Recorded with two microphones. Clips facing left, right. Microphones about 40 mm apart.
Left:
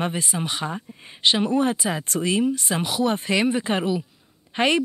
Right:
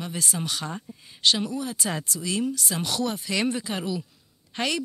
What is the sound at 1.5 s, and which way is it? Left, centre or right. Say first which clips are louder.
Speech: left 10 dB; left.